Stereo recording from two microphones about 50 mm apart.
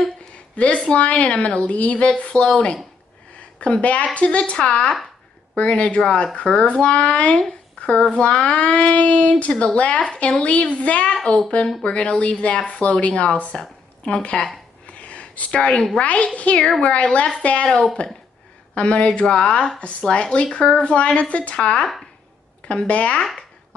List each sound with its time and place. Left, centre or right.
0.6 s a woman's voice: left
14.9 s a sound: left
16.0 s a woman's voice: left